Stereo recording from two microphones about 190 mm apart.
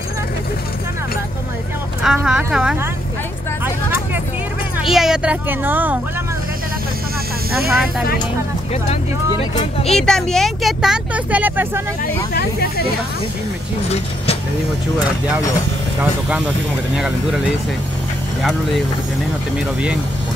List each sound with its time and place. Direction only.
2.0 s speech: 5° right (ahead or behind)
3.6 s vehicle: 10° right (ahead or behind)
4.8 s speech: centre (ahead or behind)
7.5 s speech: centre (ahead or behind)
9.8 s speech: 5° left (ahead or behind)
12.4 s speech: 55° left (ahead or behind)
16.0 s speech: 5° right (ahead or behind)
18.4 s speech: centre (ahead or behind)